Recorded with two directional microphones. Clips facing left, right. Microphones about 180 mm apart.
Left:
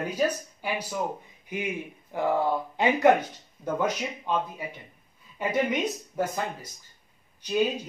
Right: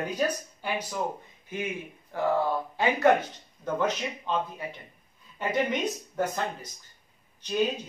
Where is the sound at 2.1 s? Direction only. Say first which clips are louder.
Left 1 dB; 15° left (ahead or behind).